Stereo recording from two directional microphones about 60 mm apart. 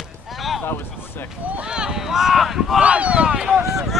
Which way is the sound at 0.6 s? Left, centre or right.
Left.